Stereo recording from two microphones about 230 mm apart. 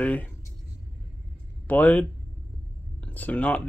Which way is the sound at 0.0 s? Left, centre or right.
Centre.